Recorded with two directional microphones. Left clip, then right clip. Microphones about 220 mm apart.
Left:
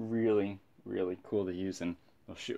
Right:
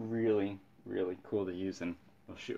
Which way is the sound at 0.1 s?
40° left (ahead or behind).